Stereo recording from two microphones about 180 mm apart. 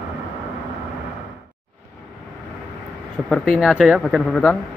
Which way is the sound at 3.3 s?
Centre (ahead or behind).